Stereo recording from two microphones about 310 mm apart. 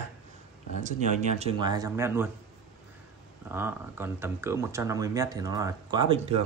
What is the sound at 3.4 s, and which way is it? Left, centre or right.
Speech, centre.